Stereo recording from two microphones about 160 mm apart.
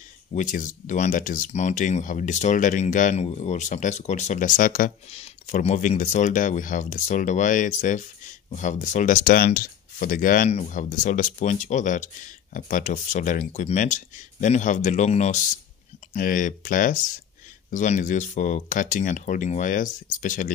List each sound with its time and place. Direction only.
0.3 s speech: 55° left (ahead or behind)
5.1 s speech: 40° left (ahead or behind)